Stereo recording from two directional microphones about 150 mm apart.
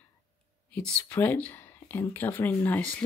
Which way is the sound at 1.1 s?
15° left (ahead or behind).